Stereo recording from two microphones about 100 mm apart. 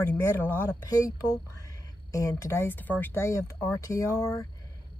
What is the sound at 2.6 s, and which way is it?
Speech, 20° left (ahead or behind).